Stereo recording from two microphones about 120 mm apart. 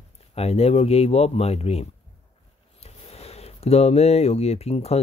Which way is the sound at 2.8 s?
60° left (ahead or behind).